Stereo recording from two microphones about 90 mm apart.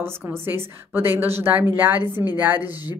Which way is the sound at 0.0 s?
25° right (ahead or behind).